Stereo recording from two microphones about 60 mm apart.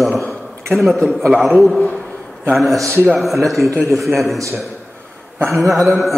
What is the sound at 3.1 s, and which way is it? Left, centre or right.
A man's voice, centre.